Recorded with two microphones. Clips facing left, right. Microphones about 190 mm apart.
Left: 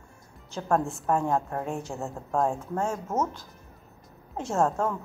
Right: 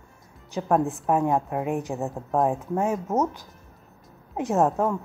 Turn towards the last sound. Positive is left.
turn(degrees=-15)  # may be behind; listen again after turning